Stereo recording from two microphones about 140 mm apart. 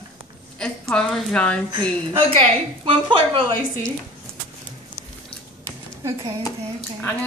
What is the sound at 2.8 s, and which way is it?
Speech, 40° right (ahead or behind).